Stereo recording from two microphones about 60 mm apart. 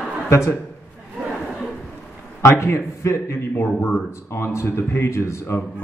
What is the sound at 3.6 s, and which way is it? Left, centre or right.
Speech, left.